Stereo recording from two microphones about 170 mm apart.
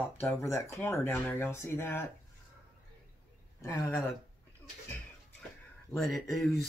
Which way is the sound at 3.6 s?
20° left (ahead or behind).